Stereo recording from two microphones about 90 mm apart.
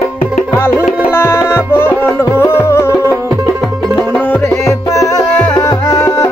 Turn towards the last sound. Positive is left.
turn(degrees=40)  # may be behind; listen again after turning